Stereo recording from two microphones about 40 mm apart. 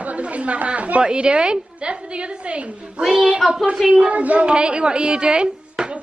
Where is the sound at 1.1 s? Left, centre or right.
Right.